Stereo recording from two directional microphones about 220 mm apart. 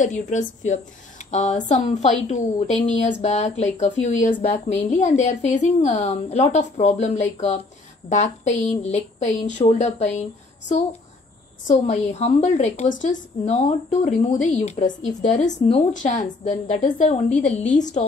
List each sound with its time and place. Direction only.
0.0 s speech: 35° left (ahead or behind)
11.6 s a woman's voice: 30° left (ahead or behind)